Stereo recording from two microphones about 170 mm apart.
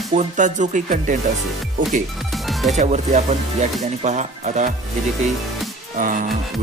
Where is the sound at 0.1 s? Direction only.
45° right (ahead or behind).